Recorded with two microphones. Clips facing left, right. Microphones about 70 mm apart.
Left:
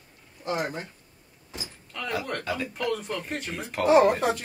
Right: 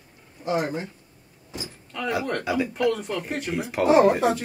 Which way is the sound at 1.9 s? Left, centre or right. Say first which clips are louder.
Right 4 dB; centre.